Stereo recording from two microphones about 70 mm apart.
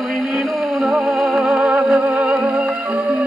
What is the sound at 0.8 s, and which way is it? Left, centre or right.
Music, centre.